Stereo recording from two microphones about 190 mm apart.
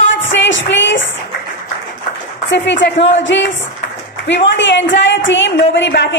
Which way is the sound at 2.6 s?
70° left (ahead or behind).